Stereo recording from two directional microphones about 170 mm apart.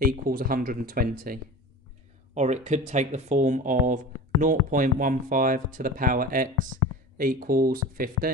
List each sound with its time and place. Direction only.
0.0 s speech: 60° right (ahead or behind)
2.3 s speech: 45° right (ahead or behind)